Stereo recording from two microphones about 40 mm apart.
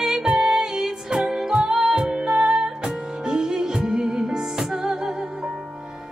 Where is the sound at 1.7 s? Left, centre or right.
Centre.